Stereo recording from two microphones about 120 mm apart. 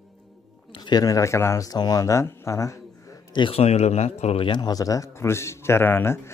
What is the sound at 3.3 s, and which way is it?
Speech, 40° left (ahead or behind).